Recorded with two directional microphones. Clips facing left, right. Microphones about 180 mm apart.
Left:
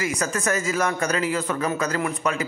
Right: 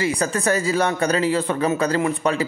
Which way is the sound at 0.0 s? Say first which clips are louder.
Right 4 dB; 30° right (ahead or behind).